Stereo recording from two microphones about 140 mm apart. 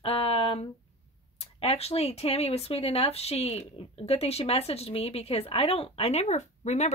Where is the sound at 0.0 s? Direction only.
45° left (ahead or behind).